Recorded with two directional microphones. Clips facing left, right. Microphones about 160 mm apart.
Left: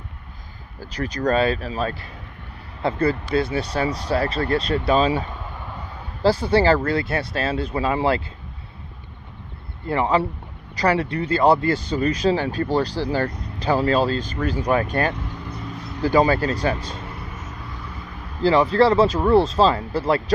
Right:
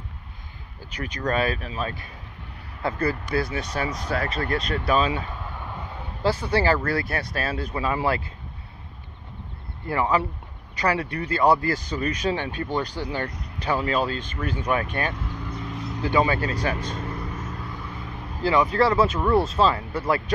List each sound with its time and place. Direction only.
0.9 s speech: 35° left (ahead or behind)
6.2 s speech: 30° left (ahead or behind)
9.8 s speech: 30° left (ahead or behind)
18.4 s speech: 30° left (ahead or behind)